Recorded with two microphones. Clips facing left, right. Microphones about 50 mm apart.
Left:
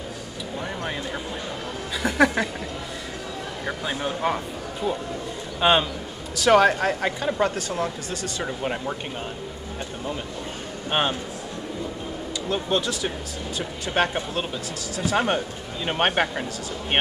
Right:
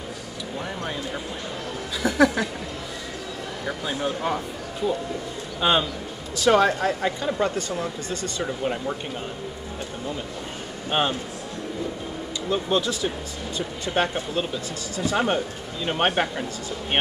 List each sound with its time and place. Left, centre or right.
2.0 s speech: centre
3.6 s speech: centre
5.6 s speech: centre
6.4 s speech: centre
10.9 s a man's voice: centre
12.4 s speech: centre
15.1 s speech: centre